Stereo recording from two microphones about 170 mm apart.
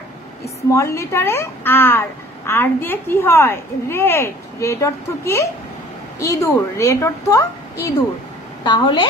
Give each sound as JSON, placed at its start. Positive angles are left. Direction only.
{"t": 0.7, "sound": "a woman's voice", "side_deg": 15}
{"t": 8.6, "sound": "a woman's voice", "side_deg": 25}